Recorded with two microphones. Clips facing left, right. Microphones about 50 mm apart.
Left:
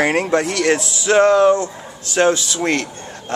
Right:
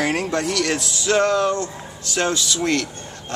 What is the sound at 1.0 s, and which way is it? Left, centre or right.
Music, centre.